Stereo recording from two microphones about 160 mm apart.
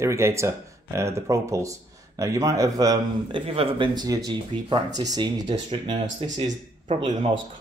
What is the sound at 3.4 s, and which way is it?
Speech, 35° right (ahead or behind).